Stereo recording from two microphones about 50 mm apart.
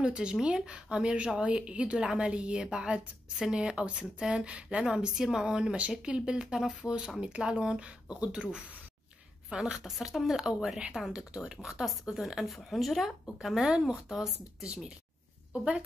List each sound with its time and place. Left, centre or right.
0.0 s a woman's voice: right
9.8 s a woman's voice: centre